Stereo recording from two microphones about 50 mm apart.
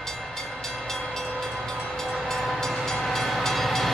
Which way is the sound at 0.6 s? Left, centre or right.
Centre.